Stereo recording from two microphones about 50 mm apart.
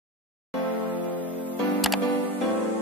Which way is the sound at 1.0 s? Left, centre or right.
Left.